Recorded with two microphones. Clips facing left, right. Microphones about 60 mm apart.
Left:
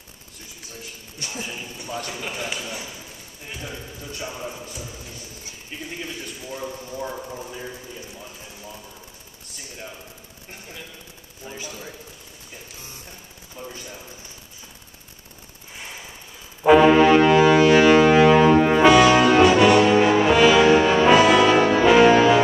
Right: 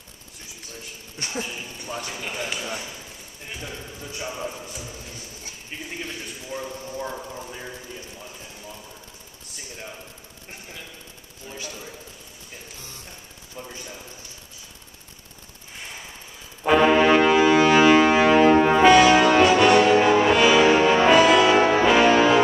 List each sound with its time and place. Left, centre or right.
1.4 s speech: centre
4.5 s speech: centre
11.4 s speech: left
16.6 s music: centre
18.4 s brass instrument: centre
18.8 s brass instrument: centre